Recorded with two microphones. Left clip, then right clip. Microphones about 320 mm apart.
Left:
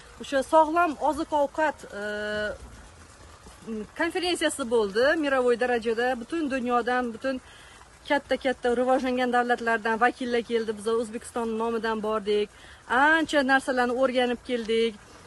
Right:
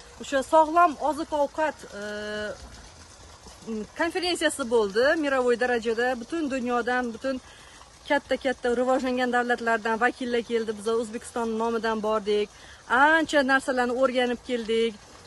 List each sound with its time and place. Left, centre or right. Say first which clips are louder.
0.2 s speech: even; centre
3.9 s speech: even; centre